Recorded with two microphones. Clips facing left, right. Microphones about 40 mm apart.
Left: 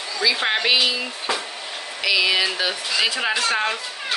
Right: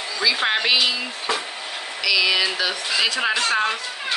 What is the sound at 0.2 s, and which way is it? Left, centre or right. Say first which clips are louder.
Speech: even; centre.